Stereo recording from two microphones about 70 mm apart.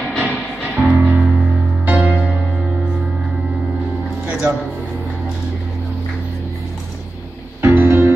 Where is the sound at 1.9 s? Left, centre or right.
Right.